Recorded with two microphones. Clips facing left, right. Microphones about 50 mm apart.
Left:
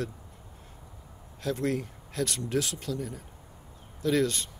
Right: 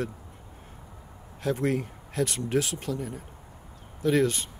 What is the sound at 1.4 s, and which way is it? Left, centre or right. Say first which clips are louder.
Speech: right 3 dB; centre.